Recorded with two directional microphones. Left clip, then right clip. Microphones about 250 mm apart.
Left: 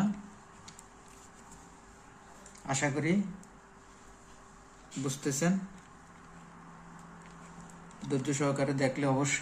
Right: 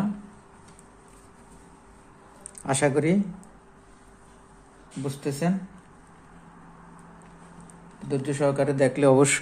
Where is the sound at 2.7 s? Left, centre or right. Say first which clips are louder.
Right 9 dB; right.